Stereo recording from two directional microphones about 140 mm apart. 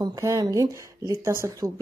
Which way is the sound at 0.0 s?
25° right (ahead or behind).